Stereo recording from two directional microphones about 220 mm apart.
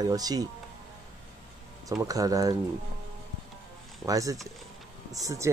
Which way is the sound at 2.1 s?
15° right (ahead or behind).